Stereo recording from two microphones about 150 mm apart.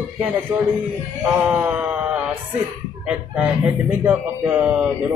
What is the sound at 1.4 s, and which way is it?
Speech, 10° right (ahead or behind).